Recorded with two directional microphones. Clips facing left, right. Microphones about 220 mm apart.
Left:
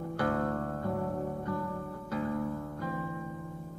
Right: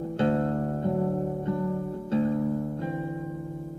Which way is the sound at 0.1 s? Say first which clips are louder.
Right 6 dB; 25° right (ahead or behind).